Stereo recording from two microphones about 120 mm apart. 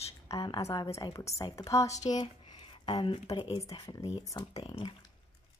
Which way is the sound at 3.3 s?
40° left (ahead or behind).